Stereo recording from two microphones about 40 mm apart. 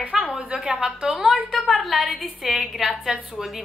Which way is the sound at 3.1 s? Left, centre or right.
Centre.